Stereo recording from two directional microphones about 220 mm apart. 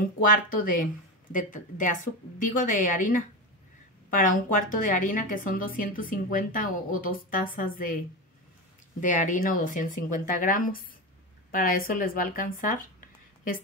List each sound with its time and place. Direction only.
0.2 s a woman's voice: 40° left (ahead or behind)
9.0 s a woman's voice: 35° left (ahead or behind)